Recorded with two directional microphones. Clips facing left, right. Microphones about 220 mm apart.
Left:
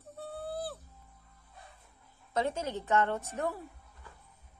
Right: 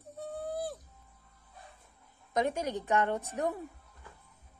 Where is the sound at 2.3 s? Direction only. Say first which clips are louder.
Right 2 dB; 15° right (ahead or behind).